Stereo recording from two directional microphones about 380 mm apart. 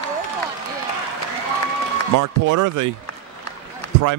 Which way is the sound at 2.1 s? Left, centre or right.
Right.